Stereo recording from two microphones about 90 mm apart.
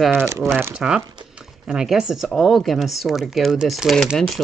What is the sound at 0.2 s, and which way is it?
Speech, 35° right (ahead or behind).